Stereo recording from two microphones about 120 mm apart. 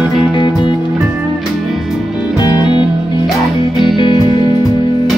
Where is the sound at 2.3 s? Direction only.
35° left (ahead or behind).